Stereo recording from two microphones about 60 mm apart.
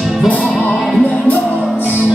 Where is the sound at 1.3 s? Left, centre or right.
Left.